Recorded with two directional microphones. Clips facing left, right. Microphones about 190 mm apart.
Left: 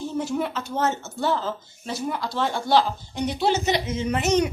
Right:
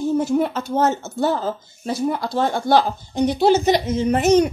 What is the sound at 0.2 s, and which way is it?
Speech, 40° right (ahead or behind).